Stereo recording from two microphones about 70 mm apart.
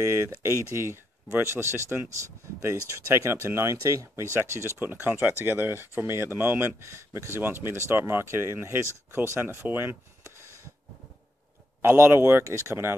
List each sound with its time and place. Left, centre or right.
0.0 s speech: right
7.3 s speech: right
11.8 s speech: right